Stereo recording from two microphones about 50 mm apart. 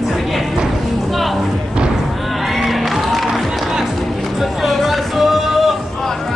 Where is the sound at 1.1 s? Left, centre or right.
Centre.